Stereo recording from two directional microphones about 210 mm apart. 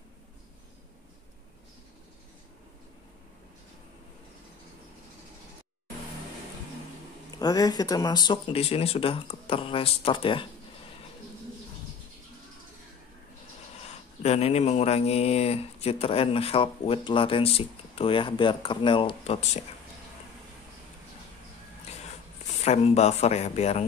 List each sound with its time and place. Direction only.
7.3 s speech: 20° left (ahead or behind)
13.7 s speech: 30° left (ahead or behind)
22.6 s speech: 30° left (ahead or behind)